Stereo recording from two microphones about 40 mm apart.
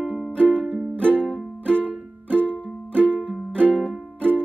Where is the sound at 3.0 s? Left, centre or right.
Left.